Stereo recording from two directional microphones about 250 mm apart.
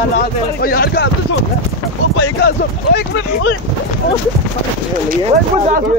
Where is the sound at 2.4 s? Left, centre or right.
Left.